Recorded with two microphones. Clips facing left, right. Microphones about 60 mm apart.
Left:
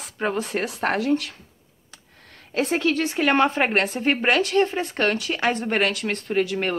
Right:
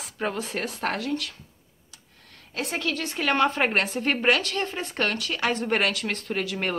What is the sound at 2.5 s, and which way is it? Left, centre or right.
A woman's voice, left.